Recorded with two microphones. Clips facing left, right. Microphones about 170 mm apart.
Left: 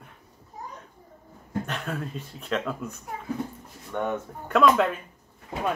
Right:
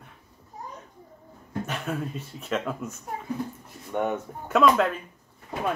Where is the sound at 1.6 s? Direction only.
5° right (ahead or behind).